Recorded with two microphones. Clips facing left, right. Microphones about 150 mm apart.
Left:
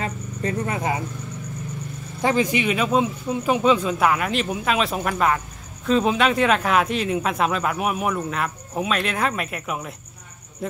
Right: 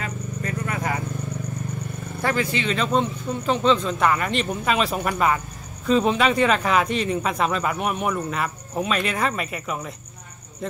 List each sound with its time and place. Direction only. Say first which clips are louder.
0.0 s vehicle: left 3 dB; 25° left (ahead or behind)
2.2 s speech: left 3 dB; 15° left (ahead or behind)